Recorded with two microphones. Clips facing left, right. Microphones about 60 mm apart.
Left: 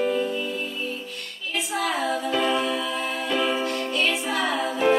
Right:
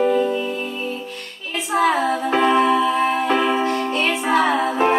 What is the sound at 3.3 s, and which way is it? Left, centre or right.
Music, right.